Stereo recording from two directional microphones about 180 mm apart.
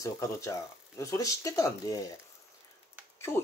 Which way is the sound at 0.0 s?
15° left (ahead or behind).